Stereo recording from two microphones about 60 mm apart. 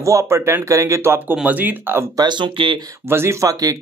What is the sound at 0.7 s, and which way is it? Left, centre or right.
Speech, right.